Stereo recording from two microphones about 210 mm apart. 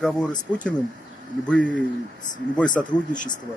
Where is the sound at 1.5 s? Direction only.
5° left (ahead or behind).